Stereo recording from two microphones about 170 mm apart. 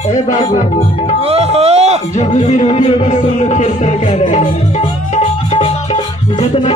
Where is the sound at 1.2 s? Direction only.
35° right (ahead or behind).